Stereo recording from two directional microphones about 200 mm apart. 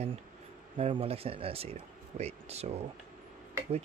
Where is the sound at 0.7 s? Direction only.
30° right (ahead or behind).